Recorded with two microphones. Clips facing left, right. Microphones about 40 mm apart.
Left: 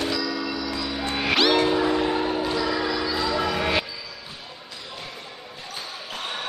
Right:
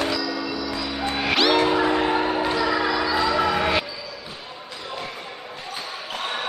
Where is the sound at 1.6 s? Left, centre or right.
Centre.